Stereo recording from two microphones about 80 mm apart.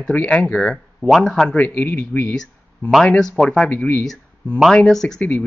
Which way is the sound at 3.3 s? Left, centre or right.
Centre.